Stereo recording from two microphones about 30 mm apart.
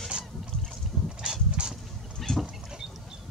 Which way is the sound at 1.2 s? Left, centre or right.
Right.